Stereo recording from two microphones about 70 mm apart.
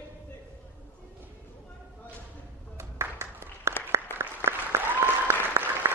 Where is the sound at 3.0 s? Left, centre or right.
Right.